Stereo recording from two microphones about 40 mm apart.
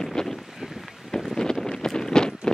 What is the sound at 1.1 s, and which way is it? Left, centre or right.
Wind, centre.